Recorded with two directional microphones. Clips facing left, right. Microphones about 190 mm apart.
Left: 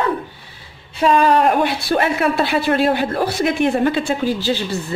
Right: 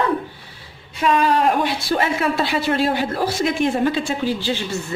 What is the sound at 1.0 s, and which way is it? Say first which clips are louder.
Speech: left 3 dB; 35° left (ahead or behind).